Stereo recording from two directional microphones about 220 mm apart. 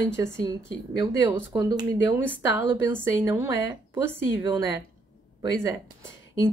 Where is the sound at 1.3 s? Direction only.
15° right (ahead or behind).